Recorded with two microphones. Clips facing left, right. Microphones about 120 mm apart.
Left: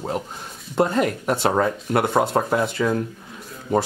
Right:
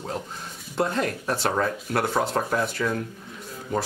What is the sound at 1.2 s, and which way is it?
Speech, 20° left (ahead or behind).